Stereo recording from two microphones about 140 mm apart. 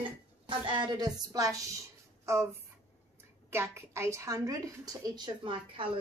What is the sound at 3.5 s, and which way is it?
Speech, 15° right (ahead or behind).